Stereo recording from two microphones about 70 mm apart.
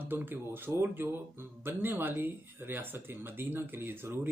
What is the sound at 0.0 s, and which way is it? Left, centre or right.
Speech, right.